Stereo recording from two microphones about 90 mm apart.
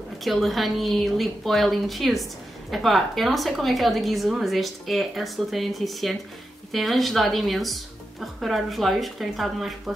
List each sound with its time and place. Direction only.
0.2 s a woman's voice: centre (ahead or behind)